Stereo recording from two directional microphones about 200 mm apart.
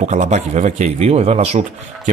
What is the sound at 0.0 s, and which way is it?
Speech, 35° right (ahead or behind).